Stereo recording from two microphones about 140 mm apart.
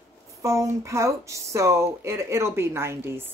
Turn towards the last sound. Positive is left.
turn(degrees=-20)  # may be behind; listen again after turning